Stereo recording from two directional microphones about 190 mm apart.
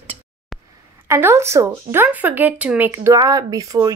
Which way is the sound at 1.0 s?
15° right (ahead or behind).